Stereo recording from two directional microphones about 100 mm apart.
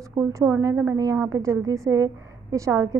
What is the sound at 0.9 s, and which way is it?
A woman's voice, 40° right (ahead or behind).